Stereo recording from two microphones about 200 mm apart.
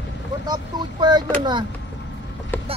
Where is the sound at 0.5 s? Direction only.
20° right (ahead or behind).